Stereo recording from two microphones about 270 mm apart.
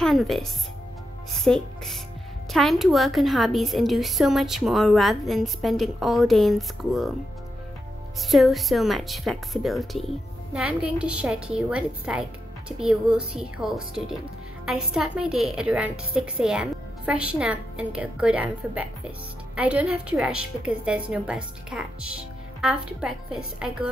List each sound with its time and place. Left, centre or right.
0.0 s a woman's voice: centre
8.3 s a woman's voice: centre